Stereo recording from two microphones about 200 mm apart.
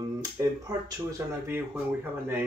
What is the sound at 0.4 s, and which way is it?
Speech, 15° right (ahead or behind).